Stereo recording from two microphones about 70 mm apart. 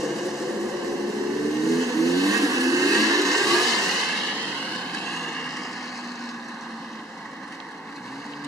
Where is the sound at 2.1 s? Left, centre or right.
Right.